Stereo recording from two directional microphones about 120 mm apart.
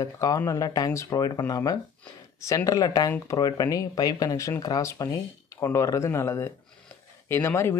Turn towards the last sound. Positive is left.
turn(degrees=20)  # may be behind; listen again after turning